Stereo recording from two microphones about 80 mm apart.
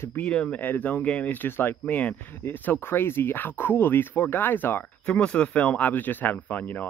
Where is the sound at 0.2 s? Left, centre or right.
Centre.